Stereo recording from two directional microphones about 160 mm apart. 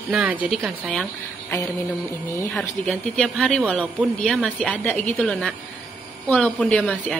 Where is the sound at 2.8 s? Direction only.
5° left (ahead or behind).